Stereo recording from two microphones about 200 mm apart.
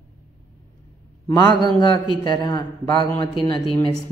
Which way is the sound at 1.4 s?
20° left (ahead or behind).